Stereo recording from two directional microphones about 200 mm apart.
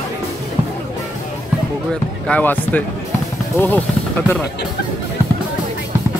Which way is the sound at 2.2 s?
5° left (ahead or behind).